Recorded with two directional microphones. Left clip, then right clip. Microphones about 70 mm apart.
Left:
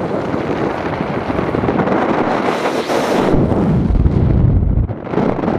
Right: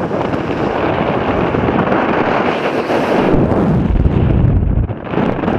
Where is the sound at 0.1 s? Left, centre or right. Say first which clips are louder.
Right 1 dB; left.